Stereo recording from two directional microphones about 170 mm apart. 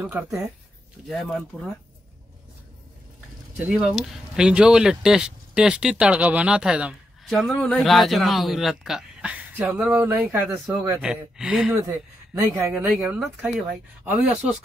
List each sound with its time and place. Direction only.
0.0 s speech: 10° right (ahead or behind)
1.0 s speech: centre (ahead or behind)
3.5 s speech: 5° right (ahead or behind)
11.7 s speech: 20° right (ahead or behind)